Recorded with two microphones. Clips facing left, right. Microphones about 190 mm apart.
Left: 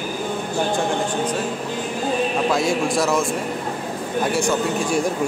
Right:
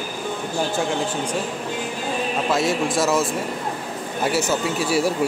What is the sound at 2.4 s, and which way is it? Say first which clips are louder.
A man's voice: left 1 dB; centre (ahead or behind).